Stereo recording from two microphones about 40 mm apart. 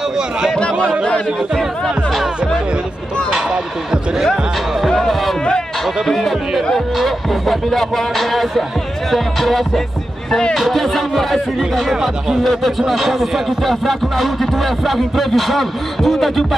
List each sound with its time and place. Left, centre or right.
0.6 s speech: left
3.3 s speech: centre
4.8 s speech: centre
11.9 s speech: centre